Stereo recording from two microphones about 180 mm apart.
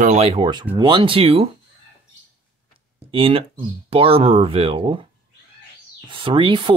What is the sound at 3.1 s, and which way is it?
Speech, 30° right (ahead or behind).